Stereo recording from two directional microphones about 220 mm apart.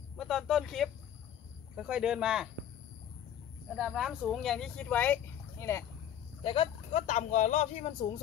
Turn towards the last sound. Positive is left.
turn(degrees=30)  # may be behind; listen again after turning